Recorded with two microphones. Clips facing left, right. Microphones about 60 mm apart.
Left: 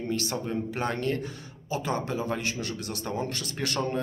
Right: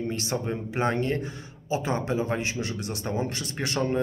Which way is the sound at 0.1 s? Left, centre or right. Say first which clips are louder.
Even; right.